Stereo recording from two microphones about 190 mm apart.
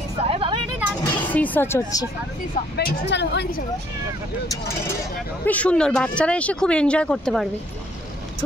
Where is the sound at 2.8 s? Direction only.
65° left (ahead or behind).